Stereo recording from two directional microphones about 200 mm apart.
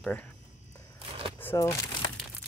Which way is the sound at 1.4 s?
15° left (ahead or behind).